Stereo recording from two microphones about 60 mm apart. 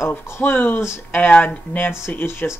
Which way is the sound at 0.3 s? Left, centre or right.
Left.